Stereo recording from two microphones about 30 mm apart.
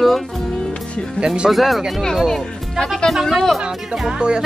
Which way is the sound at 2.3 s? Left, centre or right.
Centre.